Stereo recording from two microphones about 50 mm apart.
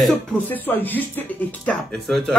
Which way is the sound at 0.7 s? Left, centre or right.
Left.